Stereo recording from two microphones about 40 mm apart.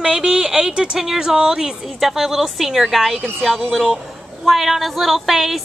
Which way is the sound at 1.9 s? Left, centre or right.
Centre.